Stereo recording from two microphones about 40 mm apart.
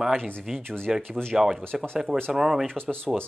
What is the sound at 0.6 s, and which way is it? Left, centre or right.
Speech, centre.